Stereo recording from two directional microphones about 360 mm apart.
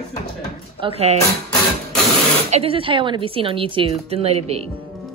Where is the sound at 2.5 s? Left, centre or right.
Centre.